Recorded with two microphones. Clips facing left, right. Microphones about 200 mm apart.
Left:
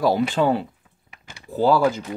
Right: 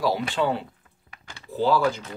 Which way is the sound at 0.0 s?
45° left (ahead or behind).